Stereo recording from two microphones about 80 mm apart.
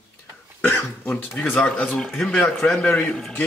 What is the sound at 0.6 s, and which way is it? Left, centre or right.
Speech, left.